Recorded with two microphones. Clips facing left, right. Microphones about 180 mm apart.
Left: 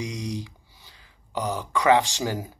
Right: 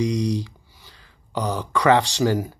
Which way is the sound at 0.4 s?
20° left (ahead or behind).